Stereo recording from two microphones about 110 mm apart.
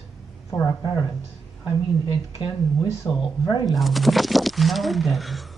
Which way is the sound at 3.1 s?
20° left (ahead or behind).